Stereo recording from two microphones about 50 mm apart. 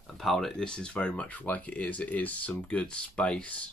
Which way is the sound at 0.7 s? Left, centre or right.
Centre.